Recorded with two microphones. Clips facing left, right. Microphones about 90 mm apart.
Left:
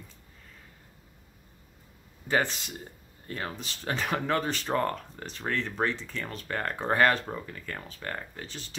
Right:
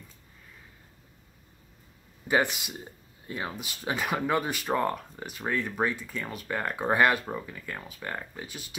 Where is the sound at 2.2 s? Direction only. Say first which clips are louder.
Right 2 dB; 15° right (ahead or behind).